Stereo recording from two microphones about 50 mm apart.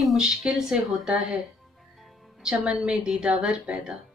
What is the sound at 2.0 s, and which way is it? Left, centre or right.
Music, centre.